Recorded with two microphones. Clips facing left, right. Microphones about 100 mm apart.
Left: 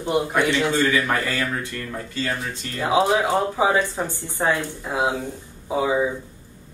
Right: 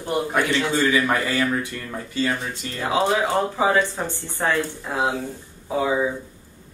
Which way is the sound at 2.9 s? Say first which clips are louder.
Left 2 dB; 10° left (ahead or behind).